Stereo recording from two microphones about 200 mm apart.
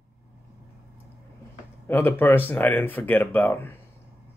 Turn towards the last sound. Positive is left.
turn(degrees=10)  # may be behind; listen again after turning